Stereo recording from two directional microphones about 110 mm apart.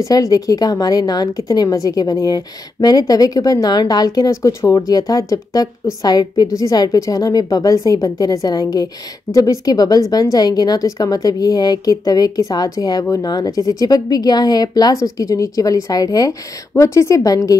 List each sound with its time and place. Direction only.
0.0 s a woman's voice: 30° left (ahead or behind)